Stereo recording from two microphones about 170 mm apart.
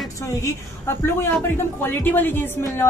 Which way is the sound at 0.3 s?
15° left (ahead or behind).